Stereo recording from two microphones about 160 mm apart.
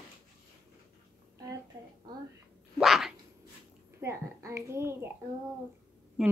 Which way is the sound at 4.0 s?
20° right (ahead or behind).